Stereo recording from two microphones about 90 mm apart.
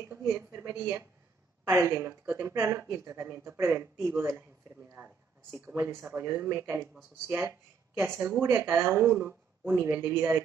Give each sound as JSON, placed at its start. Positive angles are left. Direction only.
{"t": 0.3, "sound": "speech", "side_deg": -25}
{"t": 5.8, "sound": "speech", "side_deg": -30}